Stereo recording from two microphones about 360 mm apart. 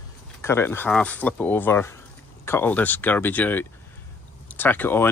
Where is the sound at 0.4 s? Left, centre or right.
Centre.